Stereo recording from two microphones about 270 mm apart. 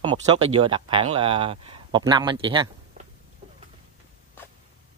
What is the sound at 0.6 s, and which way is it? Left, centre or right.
Speech, centre.